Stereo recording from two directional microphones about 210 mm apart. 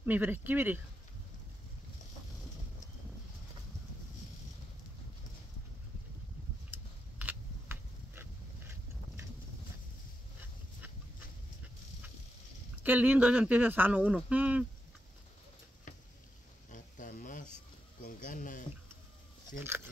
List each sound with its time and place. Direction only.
0.0 s speech: 10° right (ahead or behind)
6.7 s scissors: 10° right (ahead or behind)
7.2 s a sound: 10° right (ahead or behind)
12.7 s speech: 10° right (ahead or behind)
16.7 s a sound: 40° left (ahead or behind)
18.0 s speech: 40° left (ahead or behind)